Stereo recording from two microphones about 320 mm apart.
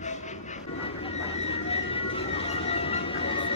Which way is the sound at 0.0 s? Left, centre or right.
Left.